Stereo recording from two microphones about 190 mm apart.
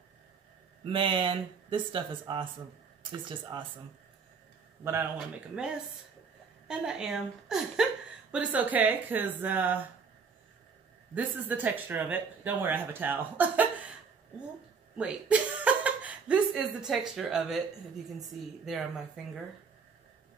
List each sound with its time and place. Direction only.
0.8 s speech: 25° right (ahead or behind)
4.8 s speech: 10° right (ahead or behind)
6.7 s a woman's voice: 5° right (ahead or behind)
11.1 s speech: 10° right (ahead or behind)
13.4 s chuckle: 10° right (ahead or behind)
15.0 s a woman's voice: 5° right (ahead or behind)
18.7 s a woman's voice: centre (ahead or behind)